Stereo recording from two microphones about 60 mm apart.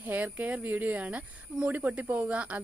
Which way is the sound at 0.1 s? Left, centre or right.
Right.